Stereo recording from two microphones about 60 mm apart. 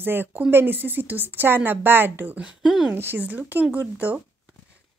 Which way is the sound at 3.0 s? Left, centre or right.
Right.